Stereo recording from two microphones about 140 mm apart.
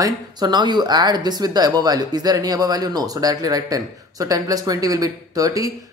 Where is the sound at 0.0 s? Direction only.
30° right (ahead or behind).